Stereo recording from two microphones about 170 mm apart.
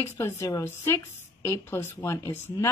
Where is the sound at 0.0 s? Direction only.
15° left (ahead or behind).